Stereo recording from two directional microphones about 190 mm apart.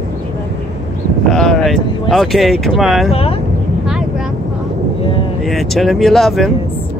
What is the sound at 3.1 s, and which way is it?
Speech, 30° left (ahead or behind).